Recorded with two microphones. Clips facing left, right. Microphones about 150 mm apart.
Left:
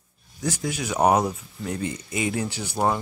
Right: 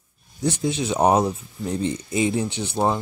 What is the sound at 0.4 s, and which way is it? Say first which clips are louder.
Speech: right 5 dB; 25° right (ahead or behind).